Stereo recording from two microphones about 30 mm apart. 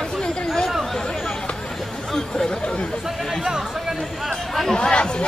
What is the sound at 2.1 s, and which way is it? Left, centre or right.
Chatter, centre.